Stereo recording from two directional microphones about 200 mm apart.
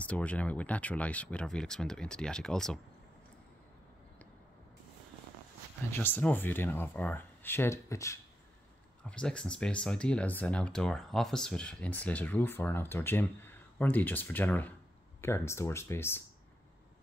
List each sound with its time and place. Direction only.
0.0 s speech: 5° left (ahead or behind)
5.9 s speech: 10° left (ahead or behind)